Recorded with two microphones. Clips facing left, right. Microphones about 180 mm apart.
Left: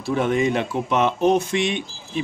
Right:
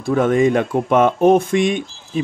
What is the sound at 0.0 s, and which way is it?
Speech, 45° right (ahead or behind).